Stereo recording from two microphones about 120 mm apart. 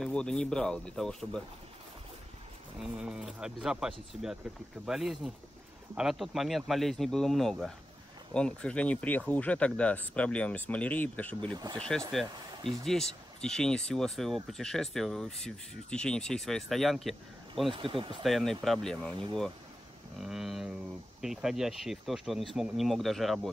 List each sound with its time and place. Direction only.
0.0 s speech: 5° left (ahead or behind)
2.8 s speech: 5° right (ahead or behind); by 11.5 s 15° left (ahead or behind)
11.5 s speech: 35° right (ahead or behind)
12.8 s speech: 5° left (ahead or behind)
17.6 s speech: 50° right (ahead or behind)
18.2 s speech: centre (ahead or behind)
20.2 s speech: 5° right (ahead or behind)